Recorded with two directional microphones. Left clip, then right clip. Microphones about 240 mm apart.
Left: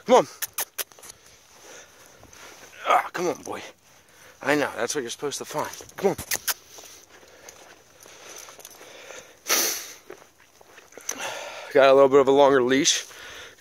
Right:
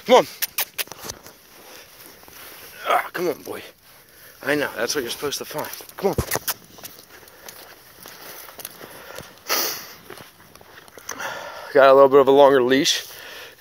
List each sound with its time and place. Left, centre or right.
0.0 s a sound: centre
2.8 s speech: centre
4.7 s speech: centre
5.5 s speech: centre
9.0 s sniff: left
11.1 s a sound: centre